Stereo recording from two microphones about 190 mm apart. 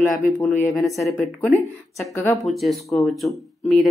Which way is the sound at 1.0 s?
15° left (ahead or behind).